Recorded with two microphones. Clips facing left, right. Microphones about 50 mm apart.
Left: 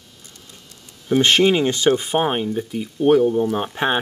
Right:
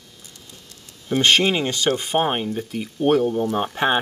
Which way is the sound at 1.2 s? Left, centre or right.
Centre.